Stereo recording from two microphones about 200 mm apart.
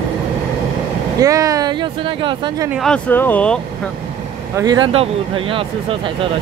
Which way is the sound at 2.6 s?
Centre (ahead or behind).